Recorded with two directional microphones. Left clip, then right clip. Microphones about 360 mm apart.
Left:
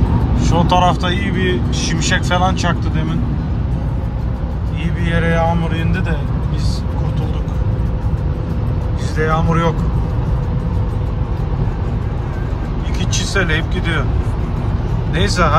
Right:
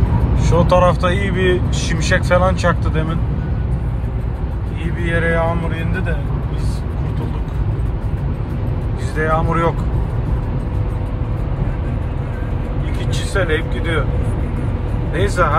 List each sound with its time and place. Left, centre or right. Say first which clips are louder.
0.4 s speech: right 1 dB; centre
5.0 s speech: even; centre
9.2 s speech: even; centre
13.3 s speech: even; centre
15.4 s speech: left 1 dB; centre